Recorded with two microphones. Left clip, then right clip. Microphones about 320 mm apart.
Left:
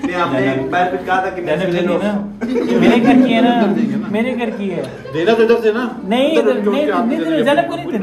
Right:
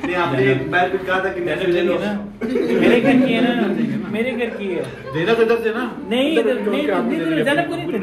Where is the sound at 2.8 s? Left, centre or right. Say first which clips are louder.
Left 3 dB; left.